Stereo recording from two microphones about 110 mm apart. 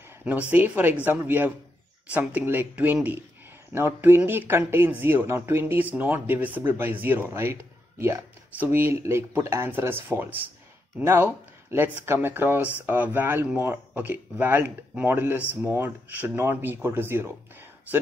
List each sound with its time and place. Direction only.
0.2 s speech: 15° right (ahead or behind)